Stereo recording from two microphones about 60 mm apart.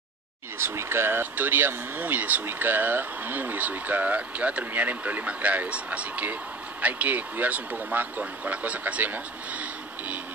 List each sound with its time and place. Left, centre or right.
0.6 s speech: right